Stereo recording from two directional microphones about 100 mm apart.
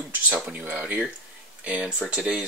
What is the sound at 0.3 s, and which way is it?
Speech, 15° right (ahead or behind).